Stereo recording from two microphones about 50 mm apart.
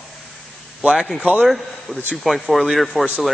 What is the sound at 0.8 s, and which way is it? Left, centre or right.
Speech, centre.